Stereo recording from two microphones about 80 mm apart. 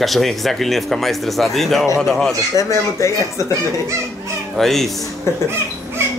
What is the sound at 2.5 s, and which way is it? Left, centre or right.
Speech, left.